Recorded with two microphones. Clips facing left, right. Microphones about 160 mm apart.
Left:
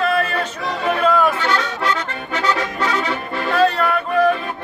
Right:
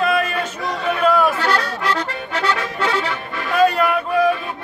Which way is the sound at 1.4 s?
35° right (ahead or behind).